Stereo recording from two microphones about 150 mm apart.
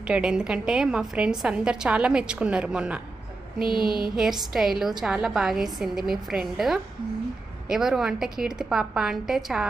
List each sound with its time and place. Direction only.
0.0 s a woman's voice: 5° right (ahead or behind)
3.6 s a sound: 30° left (ahead or behind)
4.1 s a woman's voice: 5° right (ahead or behind)